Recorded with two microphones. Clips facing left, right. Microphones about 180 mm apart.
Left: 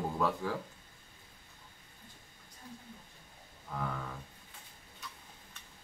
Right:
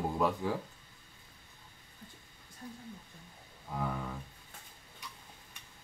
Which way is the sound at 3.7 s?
15° right (ahead or behind).